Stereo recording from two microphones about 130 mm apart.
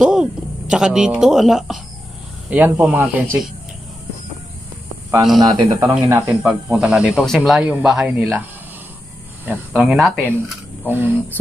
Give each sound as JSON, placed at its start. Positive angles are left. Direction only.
{"t": 0.0, "sound": "speech", "side_deg": -5}
{"t": 2.5, "sound": "speech", "side_deg": -10}
{"t": 5.4, "sound": "speech", "side_deg": -30}
{"t": 6.2, "sound": "speech", "side_deg": -5}
{"t": 9.8, "sound": "speech", "side_deg": 0}
{"t": 10.9, "sound": "speech", "side_deg": -15}